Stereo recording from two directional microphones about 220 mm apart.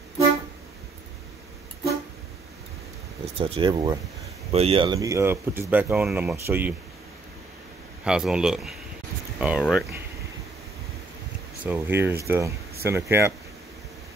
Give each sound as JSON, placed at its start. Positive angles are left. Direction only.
{"t": 3.3, "sound": "speech", "side_deg": -25}
{"t": 8.0, "sound": "speech", "side_deg": -5}
{"t": 11.6, "sound": "speech", "side_deg": -10}